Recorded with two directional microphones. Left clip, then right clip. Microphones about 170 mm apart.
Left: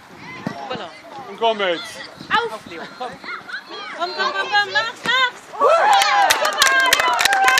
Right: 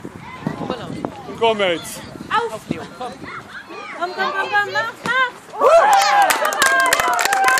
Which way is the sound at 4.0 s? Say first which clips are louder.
Right 1 dB; 50° left (ahead or behind).